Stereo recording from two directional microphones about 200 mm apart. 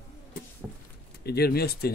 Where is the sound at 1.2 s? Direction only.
50° left (ahead or behind).